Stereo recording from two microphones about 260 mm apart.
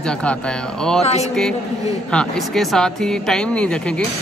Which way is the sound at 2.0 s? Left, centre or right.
Centre.